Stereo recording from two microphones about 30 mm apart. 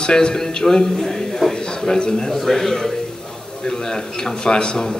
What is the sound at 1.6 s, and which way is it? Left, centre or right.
Speech, left.